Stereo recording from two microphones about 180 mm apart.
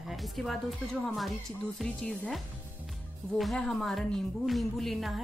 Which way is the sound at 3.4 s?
Centre (ahead or behind).